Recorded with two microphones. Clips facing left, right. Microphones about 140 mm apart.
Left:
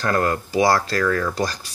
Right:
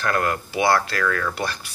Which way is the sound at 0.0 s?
30° left (ahead or behind).